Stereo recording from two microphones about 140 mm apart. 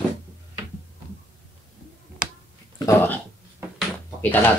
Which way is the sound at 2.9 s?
20° left (ahead or behind).